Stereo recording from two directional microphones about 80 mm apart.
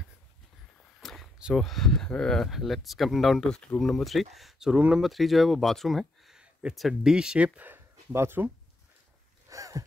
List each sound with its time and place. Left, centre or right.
1.0 s a sound: centre
1.5 s speech: centre
3.9 s speech: centre; by 8.5 s right
9.5 s wheeze: right